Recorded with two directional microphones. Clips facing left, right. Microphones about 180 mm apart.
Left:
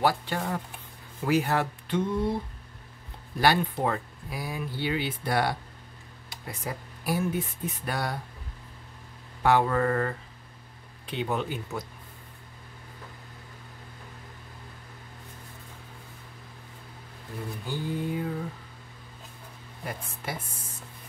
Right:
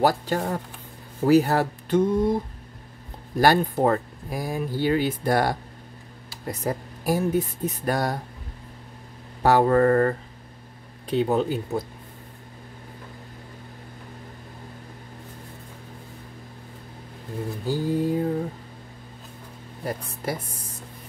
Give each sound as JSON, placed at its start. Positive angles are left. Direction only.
{"t": 0.0, "sound": "speech", "side_deg": -40}
{"t": 3.3, "sound": "speech", "side_deg": -40}
{"t": 9.4, "sound": "speech", "side_deg": -40}
{"t": 17.6, "sound": "speech", "side_deg": -40}
{"t": 19.8, "sound": "speech", "side_deg": -40}